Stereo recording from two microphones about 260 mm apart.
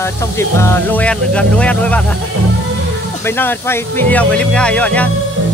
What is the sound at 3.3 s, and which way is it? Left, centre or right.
Speech, centre.